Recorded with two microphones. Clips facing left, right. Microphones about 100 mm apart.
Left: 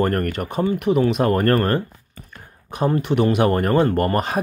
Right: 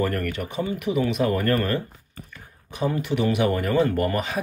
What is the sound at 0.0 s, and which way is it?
Speech, 45° left (ahead or behind).